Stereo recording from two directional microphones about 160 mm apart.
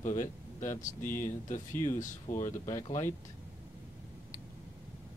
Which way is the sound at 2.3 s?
20° left (ahead or behind).